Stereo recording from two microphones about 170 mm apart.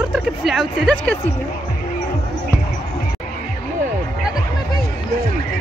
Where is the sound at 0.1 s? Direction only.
Centre (ahead or behind).